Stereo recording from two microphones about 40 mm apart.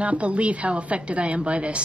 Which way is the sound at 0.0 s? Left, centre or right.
Right.